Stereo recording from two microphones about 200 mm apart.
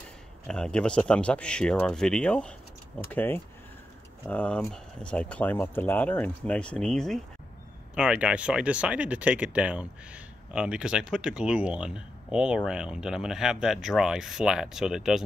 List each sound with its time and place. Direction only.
0.5 s speech: 5° left (ahead or behind)